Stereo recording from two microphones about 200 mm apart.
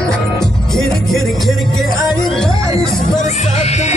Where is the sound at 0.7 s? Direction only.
Centre (ahead or behind).